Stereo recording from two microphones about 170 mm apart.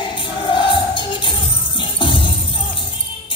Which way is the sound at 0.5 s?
30° left (ahead or behind).